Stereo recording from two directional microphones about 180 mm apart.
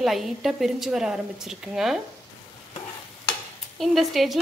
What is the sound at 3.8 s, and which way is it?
Speech, centre (ahead or behind).